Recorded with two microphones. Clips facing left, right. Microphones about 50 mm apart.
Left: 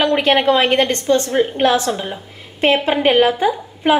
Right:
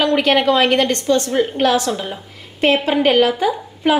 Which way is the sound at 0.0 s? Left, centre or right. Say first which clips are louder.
Even; left.